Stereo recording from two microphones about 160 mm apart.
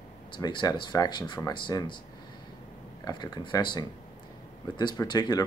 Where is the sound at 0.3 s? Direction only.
30° left (ahead or behind).